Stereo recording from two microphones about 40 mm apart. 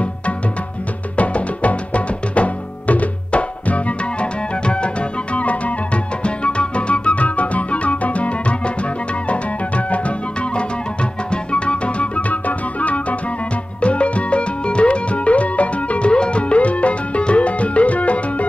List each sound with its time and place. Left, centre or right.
1.1 s music: left